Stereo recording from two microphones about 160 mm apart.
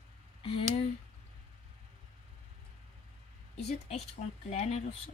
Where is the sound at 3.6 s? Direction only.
40° left (ahead or behind).